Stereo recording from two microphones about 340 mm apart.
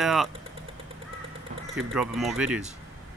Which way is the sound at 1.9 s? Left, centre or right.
Centre.